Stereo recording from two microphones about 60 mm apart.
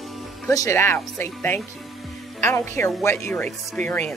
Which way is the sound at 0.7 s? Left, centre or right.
Left.